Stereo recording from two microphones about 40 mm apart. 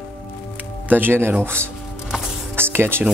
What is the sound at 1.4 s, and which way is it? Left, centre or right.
Speech, right.